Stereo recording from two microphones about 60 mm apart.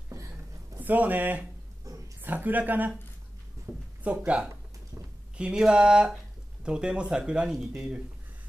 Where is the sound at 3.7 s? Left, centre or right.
Right.